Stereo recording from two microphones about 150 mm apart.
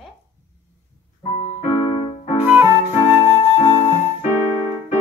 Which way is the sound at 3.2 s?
35° left (ahead or behind).